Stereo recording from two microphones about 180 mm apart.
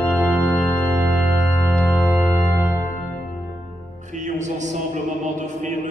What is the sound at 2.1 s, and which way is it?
Music, 10° right (ahead or behind).